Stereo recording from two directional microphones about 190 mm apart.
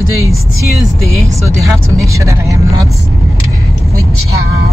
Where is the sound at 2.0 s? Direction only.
15° right (ahead or behind).